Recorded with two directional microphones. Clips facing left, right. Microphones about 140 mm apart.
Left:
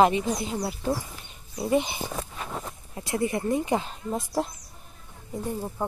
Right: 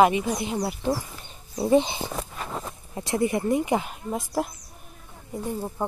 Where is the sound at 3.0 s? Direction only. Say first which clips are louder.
Right 3 dB; 25° right (ahead or behind).